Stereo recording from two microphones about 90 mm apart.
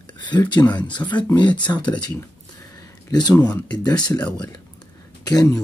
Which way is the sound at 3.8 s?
50° left (ahead or behind).